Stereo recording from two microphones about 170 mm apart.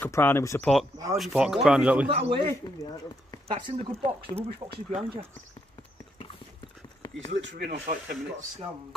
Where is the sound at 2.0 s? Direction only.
35° right (ahead or behind).